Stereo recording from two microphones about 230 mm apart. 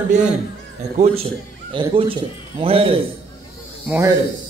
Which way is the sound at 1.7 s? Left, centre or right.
Right.